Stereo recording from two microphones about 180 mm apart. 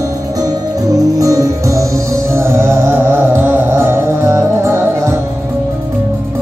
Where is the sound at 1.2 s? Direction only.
20° right (ahead or behind).